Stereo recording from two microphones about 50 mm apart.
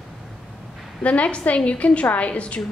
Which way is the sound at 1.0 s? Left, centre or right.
Left.